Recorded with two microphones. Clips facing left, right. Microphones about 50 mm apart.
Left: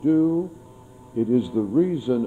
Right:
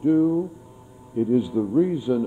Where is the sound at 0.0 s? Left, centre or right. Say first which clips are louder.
Even; right.